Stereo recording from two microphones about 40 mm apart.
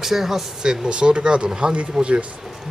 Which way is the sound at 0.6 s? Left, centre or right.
Right.